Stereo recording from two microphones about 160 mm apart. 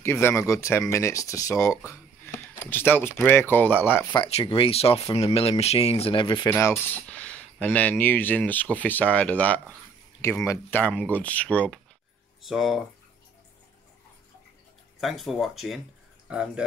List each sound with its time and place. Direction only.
0.0 s speech: 15° left (ahead or behind)
4.1 s speech: 35° left (ahead or behind)
6.7 s cutlery: 10° left (ahead or behind)
7.6 s speech: 10° left (ahead or behind)
15.0 s speech: centre (ahead or behind)